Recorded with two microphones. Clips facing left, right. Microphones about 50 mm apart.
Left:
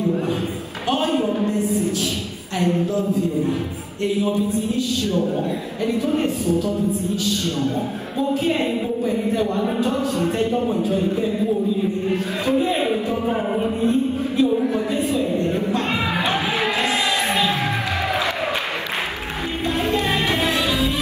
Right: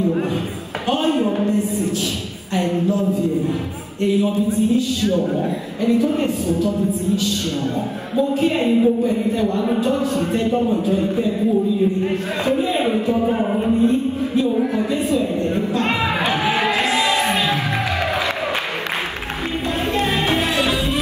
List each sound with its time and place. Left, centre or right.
0.8 s a sound: right
2.5 s a man's voice: right
8.4 s a man's voice: right
13.3 s music: centre
13.8 s music: right
14.8 s a man's voice: right
15.8 s music: right
19.8 s music: right